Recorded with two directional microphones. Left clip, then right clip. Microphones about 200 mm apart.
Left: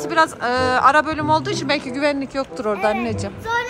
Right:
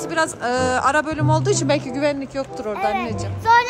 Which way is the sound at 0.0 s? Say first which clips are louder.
Left 3 dB; 10° right (ahead or behind).